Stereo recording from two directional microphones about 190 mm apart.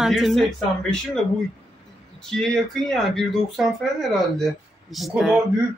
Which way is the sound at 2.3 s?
Centre (ahead or behind).